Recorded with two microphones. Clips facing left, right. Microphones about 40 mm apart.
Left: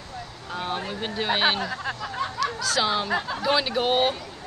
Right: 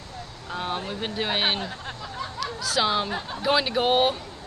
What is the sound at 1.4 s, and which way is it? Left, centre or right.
Speech, left.